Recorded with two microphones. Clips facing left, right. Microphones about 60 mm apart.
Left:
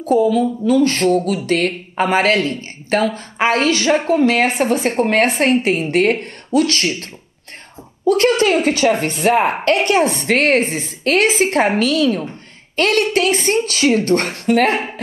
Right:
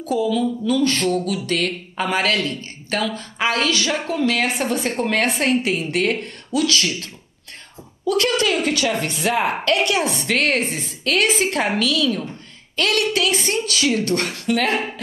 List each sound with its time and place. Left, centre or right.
0.0 s a woman's voice: left